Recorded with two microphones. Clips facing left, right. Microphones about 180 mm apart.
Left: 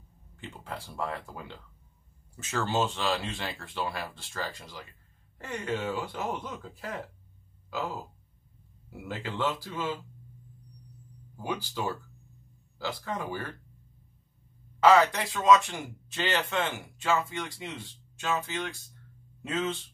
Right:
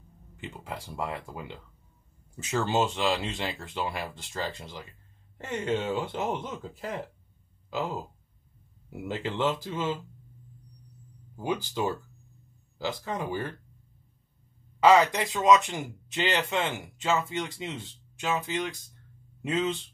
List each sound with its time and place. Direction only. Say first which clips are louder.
0.4 s speech: right 2 dB; 15° right (ahead or behind)
9.0 s speech: right 3 dB; 20° right (ahead or behind)
11.3 s speech: right 4 dB; 20° right (ahead or behind)
14.8 s speech: right 1 dB; 15° right (ahead or behind)